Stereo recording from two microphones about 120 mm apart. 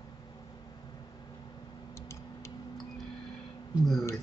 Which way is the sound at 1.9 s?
25° left (ahead or behind).